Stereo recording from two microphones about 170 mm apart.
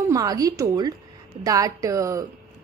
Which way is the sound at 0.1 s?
20° right (ahead or behind).